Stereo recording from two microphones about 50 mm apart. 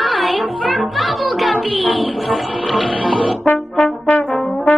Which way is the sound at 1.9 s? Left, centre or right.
Centre.